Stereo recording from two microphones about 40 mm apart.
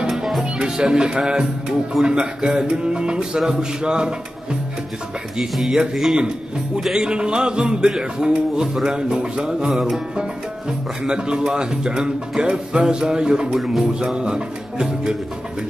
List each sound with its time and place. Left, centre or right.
0.1 s music: centre
0.4 s speech: centre
5.4 s speech: centre
6.1 s speech: right
6.8 s speech: centre
7.1 s speech: right